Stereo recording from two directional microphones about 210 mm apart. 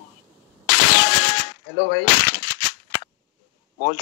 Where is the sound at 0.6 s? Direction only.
50° left (ahead or behind).